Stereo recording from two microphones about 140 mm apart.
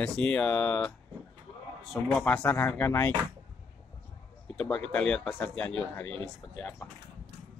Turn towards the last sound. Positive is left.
turn(degrees=5)  # may be behind; listen again after turning